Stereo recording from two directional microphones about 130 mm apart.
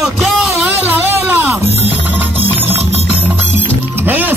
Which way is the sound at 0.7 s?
15° right (ahead or behind).